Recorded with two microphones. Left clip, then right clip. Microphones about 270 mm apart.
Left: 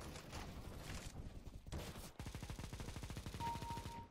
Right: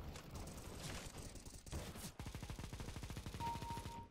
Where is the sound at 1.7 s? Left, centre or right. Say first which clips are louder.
Even; centre.